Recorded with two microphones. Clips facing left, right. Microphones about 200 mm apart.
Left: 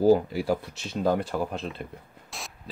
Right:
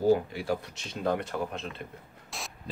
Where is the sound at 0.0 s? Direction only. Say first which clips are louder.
Left 4 dB; 35° left (ahead or behind).